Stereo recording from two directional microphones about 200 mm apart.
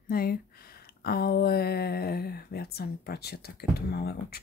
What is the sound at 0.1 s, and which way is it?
Speech, 50° left (ahead or behind).